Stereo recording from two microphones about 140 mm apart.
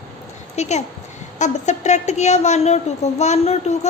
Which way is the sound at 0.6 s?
55° left (ahead or behind).